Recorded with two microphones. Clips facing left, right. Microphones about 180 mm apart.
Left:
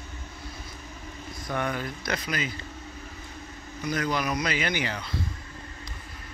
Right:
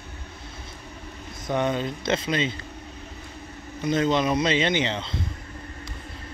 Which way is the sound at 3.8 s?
25° right (ahead or behind).